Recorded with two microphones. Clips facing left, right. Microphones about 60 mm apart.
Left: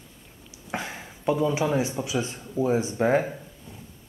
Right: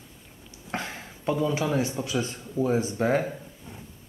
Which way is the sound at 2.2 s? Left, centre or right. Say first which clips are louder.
Left 1 dB; centre.